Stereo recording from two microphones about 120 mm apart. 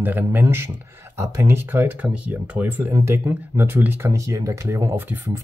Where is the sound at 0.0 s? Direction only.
15° right (ahead or behind).